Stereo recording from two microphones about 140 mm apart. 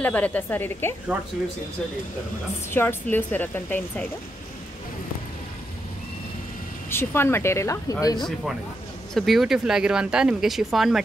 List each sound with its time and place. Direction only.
0.0 s a woman's voice: 10° left (ahead or behind)
2.7 s a woman's voice: 15° left (ahead or behind)
6.9 s speech: 15° left (ahead or behind)
9.1 s speech: centre (ahead or behind)